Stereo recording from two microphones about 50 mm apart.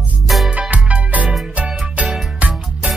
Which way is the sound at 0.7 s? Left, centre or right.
Right.